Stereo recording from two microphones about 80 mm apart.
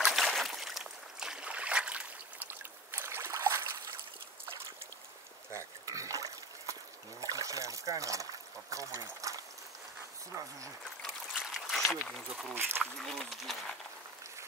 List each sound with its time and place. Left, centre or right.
0.0 s boat: centre
2.9 s boat: right
5.5 s dog: right
11.3 s a sound: centre
12.1 s speech: centre
12.5 s speech: right
13.0 s speech: centre